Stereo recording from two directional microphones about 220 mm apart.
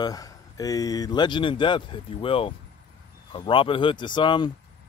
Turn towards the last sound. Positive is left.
turn(degrees=20)  # may be behind; listen again after turning